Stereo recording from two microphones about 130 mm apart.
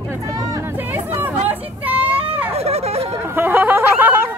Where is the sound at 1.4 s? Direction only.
15° right (ahead or behind).